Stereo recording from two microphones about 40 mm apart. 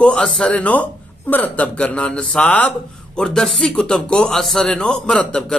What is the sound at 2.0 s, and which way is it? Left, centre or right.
A man's voice, left.